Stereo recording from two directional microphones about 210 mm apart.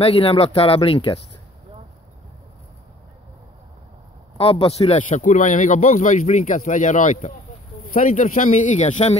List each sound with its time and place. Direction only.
0.0 s speech: 25° left (ahead or behind)
4.4 s speech: 25° left (ahead or behind)